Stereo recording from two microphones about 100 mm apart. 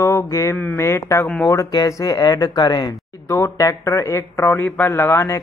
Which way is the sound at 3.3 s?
30° left (ahead or behind).